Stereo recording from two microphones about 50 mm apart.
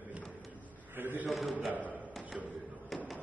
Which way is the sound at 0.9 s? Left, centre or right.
Right.